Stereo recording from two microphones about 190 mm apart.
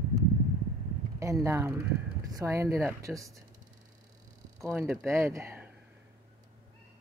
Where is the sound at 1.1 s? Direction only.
15° right (ahead or behind).